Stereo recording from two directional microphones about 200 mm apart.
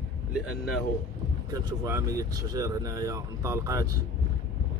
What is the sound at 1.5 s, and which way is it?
Speech, 15° right (ahead or behind).